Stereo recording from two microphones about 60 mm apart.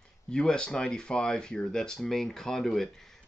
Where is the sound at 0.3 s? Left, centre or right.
Centre.